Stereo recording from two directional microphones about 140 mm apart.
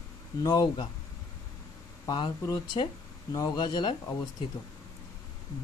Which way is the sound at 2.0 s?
30° left (ahead or behind).